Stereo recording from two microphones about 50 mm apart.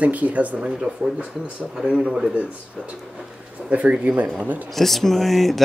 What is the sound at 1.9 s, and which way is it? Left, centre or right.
Speech, right.